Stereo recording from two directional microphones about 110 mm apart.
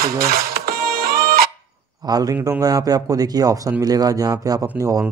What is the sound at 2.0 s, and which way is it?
Speech, 35° right (ahead or behind).